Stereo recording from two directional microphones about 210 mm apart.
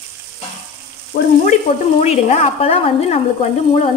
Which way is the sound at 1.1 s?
40° left (ahead or behind).